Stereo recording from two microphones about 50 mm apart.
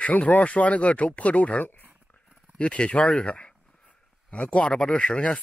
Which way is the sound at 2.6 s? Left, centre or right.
Left.